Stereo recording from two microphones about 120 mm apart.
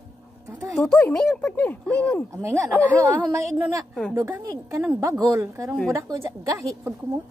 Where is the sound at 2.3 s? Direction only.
25° right (ahead or behind).